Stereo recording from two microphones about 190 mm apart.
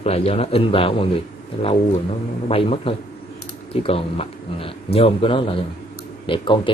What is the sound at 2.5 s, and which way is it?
Speech, 30° left (ahead or behind).